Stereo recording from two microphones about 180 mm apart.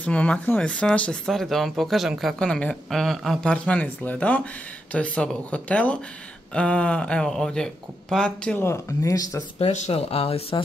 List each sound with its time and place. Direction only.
0.0 s speech: 5° left (ahead or behind)
9.6 s speech: 35° left (ahead or behind)